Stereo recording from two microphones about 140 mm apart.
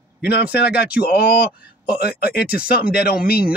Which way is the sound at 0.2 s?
90° left.